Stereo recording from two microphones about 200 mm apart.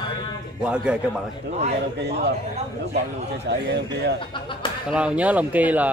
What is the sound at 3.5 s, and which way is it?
Speech, 60° right (ahead or behind).